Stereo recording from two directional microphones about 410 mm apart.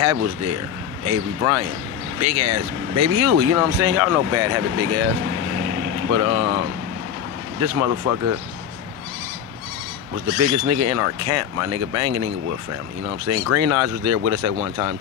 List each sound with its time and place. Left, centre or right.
0.0 s speech: right
7.6 s speech: right
10.1 s speech: right